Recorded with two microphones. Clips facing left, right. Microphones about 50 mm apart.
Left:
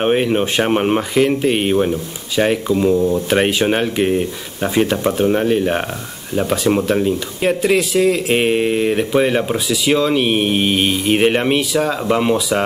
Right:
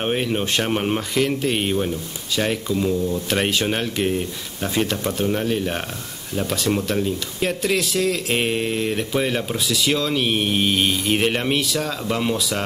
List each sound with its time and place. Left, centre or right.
0.0 s speech: left
2.9 s speech: left
3.3 s speech: centre